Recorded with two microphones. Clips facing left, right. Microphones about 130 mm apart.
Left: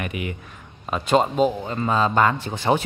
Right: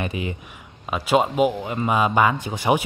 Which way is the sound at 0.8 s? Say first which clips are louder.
Even; 5° right (ahead or behind).